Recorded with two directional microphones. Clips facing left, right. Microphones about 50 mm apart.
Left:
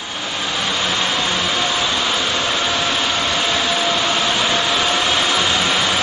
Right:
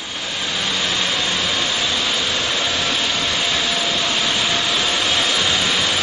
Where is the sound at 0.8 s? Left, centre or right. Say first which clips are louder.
Left 2 dB; centre.